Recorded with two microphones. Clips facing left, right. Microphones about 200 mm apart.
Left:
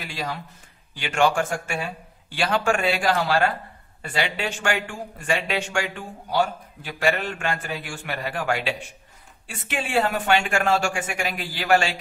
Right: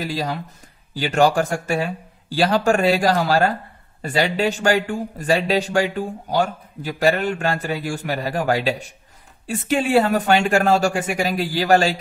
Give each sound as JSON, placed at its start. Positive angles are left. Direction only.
{"t": 0.0, "sound": "a man's voice", "side_deg": -35}